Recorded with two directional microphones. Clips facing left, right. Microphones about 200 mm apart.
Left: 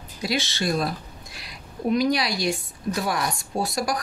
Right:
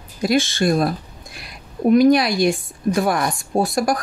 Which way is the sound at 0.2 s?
50° right (ahead or behind).